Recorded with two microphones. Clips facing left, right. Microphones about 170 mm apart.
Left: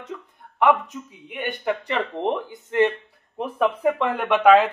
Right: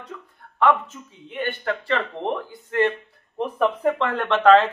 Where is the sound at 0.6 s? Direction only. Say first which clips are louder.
Left 1 dB; 20° left (ahead or behind).